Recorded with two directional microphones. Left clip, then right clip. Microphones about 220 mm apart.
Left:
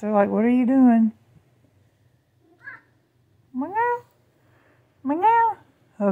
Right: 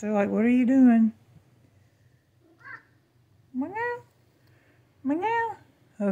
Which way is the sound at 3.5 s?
10° left (ahead or behind).